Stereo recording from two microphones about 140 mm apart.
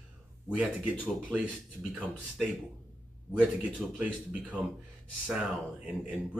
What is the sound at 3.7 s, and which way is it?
Speech, 10° right (ahead or behind).